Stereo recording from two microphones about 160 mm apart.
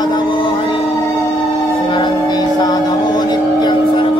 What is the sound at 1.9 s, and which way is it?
Music, 25° left (ahead or behind).